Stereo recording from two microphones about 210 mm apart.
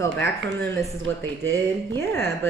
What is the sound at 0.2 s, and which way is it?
Speech, 50° right (ahead or behind).